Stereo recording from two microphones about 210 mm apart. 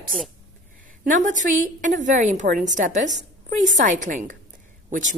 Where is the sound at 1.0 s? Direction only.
40° right (ahead or behind).